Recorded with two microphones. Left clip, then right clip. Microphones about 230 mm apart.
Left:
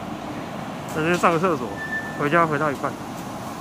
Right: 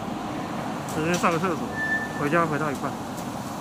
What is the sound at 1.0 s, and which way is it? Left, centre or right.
Speech, left.